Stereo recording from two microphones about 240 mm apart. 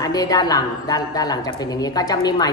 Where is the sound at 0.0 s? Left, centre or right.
Centre.